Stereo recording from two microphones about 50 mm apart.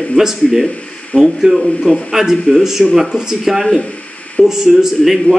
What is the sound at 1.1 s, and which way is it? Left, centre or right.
Speech, left.